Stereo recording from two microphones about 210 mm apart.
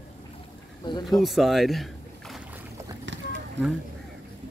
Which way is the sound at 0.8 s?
20° left (ahead or behind).